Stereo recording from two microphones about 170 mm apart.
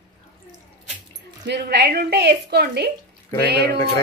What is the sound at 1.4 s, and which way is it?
A woman's voice, 80° right.